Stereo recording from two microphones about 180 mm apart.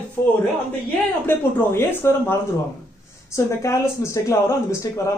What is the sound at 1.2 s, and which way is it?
Speech, 10° left (ahead or behind).